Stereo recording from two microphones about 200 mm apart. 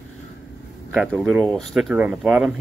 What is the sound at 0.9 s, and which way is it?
Speech, centre (ahead or behind).